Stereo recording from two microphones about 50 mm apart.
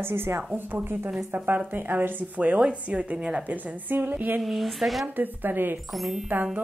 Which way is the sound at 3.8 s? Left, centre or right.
Right.